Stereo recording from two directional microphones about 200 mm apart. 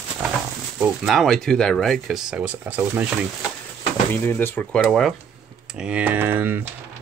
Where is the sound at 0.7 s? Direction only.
Centre (ahead or behind).